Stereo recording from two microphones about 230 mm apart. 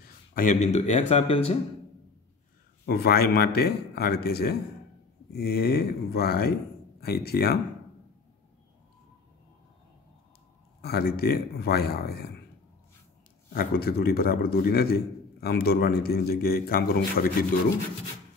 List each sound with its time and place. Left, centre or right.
0.0 s speech: left
2.8 s speech: left
10.8 s speech: left
13.5 s a man's voice: left